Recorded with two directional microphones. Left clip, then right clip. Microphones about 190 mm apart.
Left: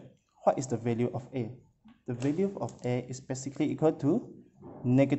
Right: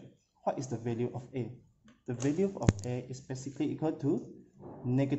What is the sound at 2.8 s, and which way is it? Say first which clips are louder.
A man's voice: left 6 dB; 25° left (ahead or behind).